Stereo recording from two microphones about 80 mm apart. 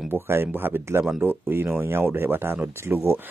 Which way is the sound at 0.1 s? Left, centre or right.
Right.